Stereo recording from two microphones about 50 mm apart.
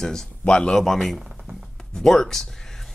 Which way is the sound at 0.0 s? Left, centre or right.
Centre.